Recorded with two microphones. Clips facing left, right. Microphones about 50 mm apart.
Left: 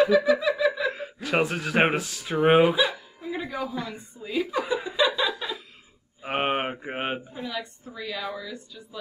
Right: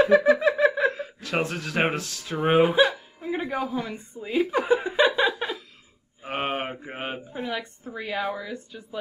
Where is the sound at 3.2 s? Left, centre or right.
Right.